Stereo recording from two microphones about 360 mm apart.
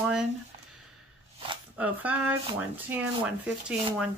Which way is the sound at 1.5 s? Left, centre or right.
Centre.